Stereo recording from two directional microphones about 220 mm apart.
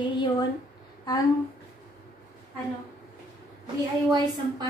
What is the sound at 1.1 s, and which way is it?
Speech, 15° left (ahead or behind).